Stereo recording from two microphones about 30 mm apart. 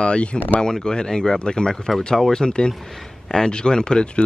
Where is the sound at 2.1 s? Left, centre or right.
Centre.